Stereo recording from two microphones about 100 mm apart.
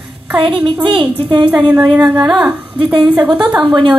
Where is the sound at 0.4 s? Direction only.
60° right (ahead or behind).